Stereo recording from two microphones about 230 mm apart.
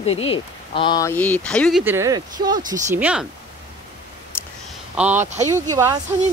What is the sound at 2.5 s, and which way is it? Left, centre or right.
Speech, right.